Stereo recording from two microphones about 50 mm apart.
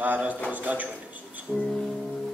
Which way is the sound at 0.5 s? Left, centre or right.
Right.